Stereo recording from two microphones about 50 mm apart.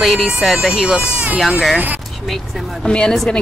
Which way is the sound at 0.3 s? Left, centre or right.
Centre.